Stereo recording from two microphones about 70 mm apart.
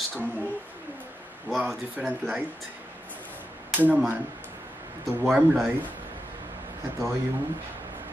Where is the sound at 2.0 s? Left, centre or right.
Centre.